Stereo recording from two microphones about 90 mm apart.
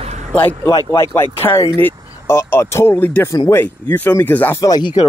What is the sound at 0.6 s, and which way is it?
Speech, 35° left (ahead or behind).